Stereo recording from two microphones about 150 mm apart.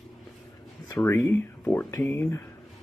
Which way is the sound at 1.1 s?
20° left (ahead or behind).